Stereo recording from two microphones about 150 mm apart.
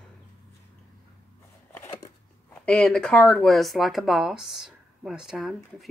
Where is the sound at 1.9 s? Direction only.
25° left (ahead or behind).